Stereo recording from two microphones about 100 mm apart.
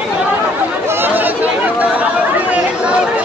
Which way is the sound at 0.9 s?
20° right (ahead or behind).